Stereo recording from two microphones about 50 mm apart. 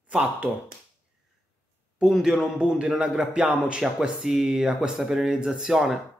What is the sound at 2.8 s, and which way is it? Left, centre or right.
Speech, right.